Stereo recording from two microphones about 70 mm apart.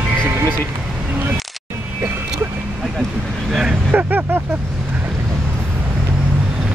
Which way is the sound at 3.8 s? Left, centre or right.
Right.